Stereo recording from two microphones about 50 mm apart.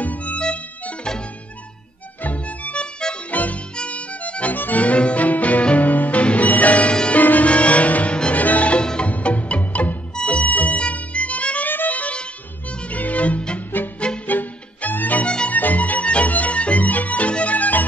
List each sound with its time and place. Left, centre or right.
0.0 s music: left
0.4 s music: centre
2.2 s music: left
3.3 s music: left
9.1 s music: left
14.2 s music: left
15.2 s music: left
15.5 s music: left